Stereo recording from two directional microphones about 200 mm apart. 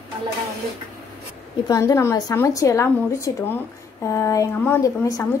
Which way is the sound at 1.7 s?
15° left (ahead or behind).